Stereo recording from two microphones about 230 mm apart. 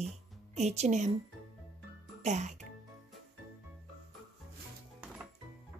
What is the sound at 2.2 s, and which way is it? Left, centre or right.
Speech, right.